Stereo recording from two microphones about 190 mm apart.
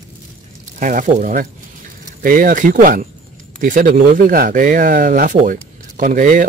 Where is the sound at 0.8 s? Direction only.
45° right (ahead or behind).